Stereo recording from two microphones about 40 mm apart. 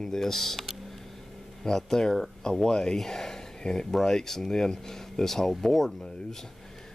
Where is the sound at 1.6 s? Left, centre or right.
Centre.